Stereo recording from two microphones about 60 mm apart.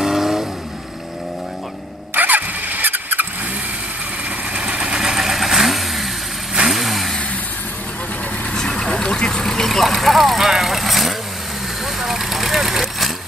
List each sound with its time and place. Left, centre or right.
0.0 s vehicle: centre
2.1 s vehicle: right
4.6 s vehicle: centre
8.5 s vehicle: centre